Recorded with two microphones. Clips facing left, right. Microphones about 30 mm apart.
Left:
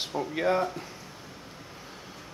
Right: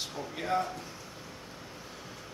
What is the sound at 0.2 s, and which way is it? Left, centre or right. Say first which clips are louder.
Speech: left 7 dB; left.